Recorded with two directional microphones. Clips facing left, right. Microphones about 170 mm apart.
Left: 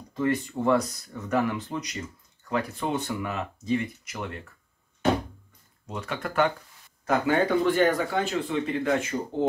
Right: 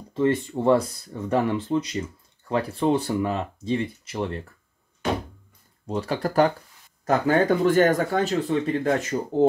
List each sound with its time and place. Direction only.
0.1 s speech: 25° right (ahead or behind)
5.9 s speech: 35° right (ahead or behind)